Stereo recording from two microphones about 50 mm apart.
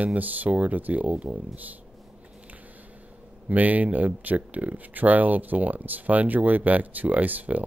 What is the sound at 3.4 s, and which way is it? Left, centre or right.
Speech, right.